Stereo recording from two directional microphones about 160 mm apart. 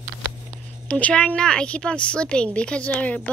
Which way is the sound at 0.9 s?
10° left (ahead or behind).